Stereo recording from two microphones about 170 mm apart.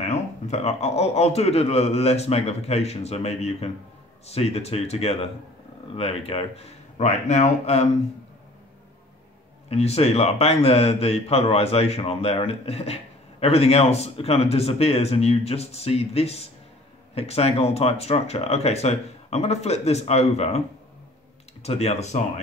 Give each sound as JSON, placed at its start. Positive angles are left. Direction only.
{"t": 0.0, "sound": "speech", "side_deg": 40}
{"t": 9.7, "sound": "speech", "side_deg": 35}
{"t": 21.6, "sound": "speech", "side_deg": 40}